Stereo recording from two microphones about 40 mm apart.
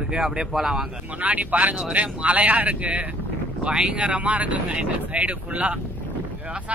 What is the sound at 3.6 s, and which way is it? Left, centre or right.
Speech, right.